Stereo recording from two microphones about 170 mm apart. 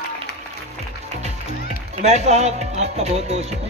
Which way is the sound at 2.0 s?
40° right (ahead or behind).